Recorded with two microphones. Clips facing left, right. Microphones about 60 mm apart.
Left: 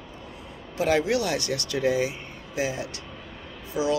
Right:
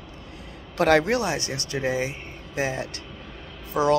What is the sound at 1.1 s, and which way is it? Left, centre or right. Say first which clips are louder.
Speech: even; right.